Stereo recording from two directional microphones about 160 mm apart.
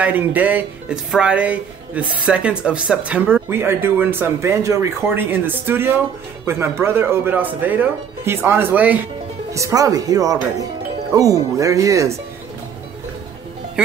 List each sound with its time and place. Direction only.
0.0 s speech: 10° right (ahead or behind)
13.8 s speech: 5° right (ahead or behind)